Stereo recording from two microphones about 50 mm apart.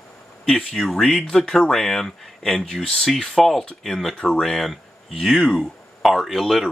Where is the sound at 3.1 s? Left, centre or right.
Centre.